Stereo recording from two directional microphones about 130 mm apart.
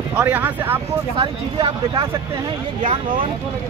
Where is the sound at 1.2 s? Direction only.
45° right (ahead or behind).